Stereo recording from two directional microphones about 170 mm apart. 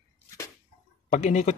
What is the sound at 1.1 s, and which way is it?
Speech, 40° left (ahead or behind).